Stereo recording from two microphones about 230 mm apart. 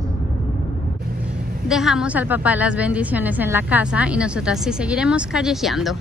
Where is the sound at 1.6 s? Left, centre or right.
Centre.